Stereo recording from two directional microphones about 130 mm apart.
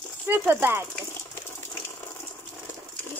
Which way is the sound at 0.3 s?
15° right (ahead or behind).